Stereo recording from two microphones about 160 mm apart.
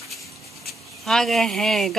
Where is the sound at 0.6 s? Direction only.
Centre (ahead or behind).